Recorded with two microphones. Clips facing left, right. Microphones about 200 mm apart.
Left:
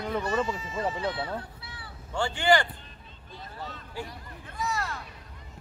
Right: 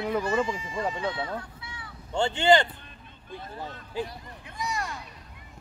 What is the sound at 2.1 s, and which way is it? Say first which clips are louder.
Speech: right 3 dB; 25° right (ahead or behind).